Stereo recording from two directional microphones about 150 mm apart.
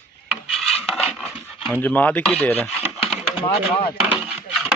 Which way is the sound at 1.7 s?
10° left (ahead or behind).